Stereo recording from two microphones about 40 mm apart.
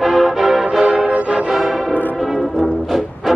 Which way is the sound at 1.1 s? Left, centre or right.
Right.